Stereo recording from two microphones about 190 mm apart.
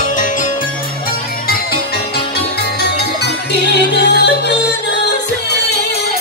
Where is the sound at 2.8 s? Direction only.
60° left (ahead or behind).